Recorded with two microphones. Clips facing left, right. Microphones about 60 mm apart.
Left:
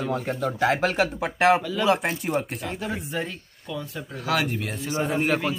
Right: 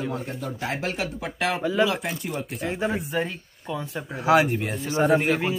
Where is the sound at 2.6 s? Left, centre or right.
Centre.